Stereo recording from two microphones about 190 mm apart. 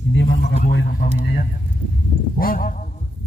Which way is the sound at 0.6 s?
55° left (ahead or behind).